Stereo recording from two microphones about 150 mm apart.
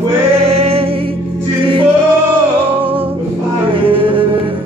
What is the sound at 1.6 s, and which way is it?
Singing, 35° right (ahead or behind).